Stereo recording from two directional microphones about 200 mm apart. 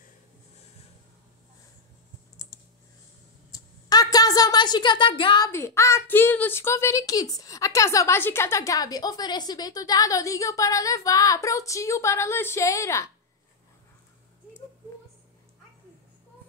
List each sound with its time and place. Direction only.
2.5 s typing: 15° left (ahead or behind)
3.5 s a sound: 20° left (ahead or behind)
5.5 s a woman's voice: 15° left (ahead or behind)